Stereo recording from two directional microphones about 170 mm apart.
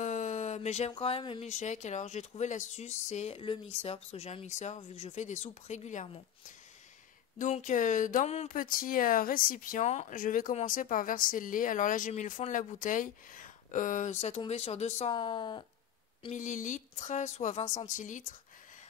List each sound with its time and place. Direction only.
0.0 s a sound: 45° left (ahead or behind)
1.5 s speech: 45° left (ahead or behind)
7.3 s speech: 45° left (ahead or behind); by 15.6 s 25° left (ahead or behind)
16.3 s speech: 50° left (ahead or behind)